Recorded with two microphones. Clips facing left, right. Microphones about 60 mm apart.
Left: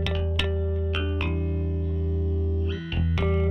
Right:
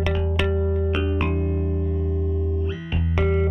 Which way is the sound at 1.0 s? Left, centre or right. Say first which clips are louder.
Right 5 dB; right.